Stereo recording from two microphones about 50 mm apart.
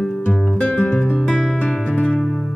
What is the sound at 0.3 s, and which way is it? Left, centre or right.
Music, left.